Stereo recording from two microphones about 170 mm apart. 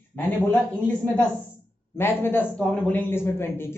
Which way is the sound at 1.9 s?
15° left (ahead or behind).